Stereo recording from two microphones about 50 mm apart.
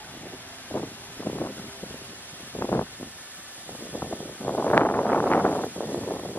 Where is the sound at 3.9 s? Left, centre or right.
Left.